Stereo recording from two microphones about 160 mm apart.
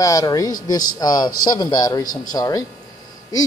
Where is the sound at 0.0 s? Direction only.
20° left (ahead or behind).